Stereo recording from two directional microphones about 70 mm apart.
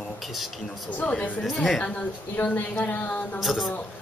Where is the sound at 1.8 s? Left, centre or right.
Centre.